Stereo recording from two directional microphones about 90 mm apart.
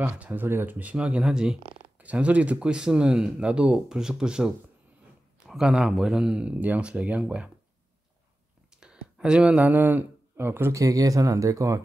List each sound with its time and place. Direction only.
0.0 s speech: 20° right (ahead or behind)
8.7 s a sound: 10° right (ahead or behind)
10.7 s speech: 40° right (ahead or behind)